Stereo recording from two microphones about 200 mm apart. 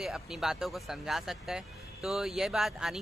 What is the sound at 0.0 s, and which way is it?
Speech, centre (ahead or behind).